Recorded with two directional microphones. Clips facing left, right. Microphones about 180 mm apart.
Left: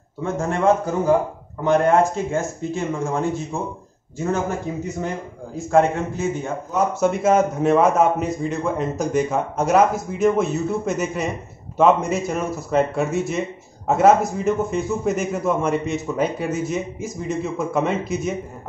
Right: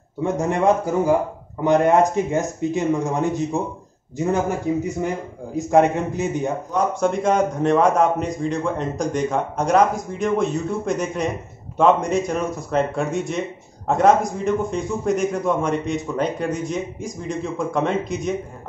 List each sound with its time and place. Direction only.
0.2 s speech: 15° right (ahead or behind)
6.7 s a man's voice: 5° left (ahead or behind)